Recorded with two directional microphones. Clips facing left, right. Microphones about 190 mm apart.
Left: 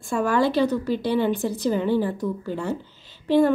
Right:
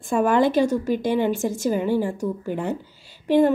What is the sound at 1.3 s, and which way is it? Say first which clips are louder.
Speech: right 1 dB; 45° right (ahead or behind).